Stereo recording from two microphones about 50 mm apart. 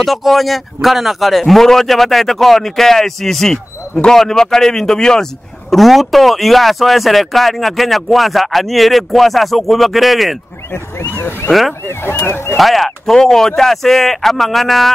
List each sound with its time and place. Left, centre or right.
0.0 s a man's voice: centre
11.0 s speech: left
12.5 s a man's voice: centre